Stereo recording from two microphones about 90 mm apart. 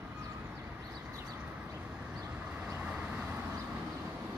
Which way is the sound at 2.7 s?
15° right (ahead or behind).